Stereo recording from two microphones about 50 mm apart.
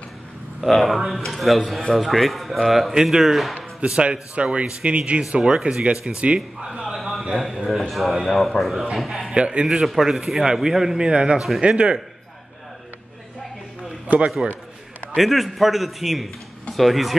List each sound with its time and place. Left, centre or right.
0.6 s speech: centre
3.0 s speech: centre
4.0 s a man's voice: right
7.0 s a sound: centre
7.4 s speech: centre
9.3 s a man's voice: centre
9.7 s a man's voice: centre
14.0 s a man's voice: right
15.1 s speech: centre